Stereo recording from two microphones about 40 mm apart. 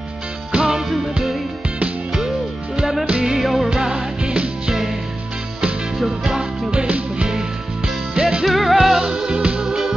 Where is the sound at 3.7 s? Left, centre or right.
Right.